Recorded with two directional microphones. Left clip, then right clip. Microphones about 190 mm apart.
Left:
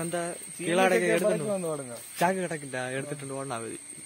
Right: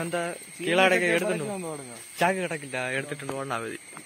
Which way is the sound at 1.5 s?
60° left (ahead or behind).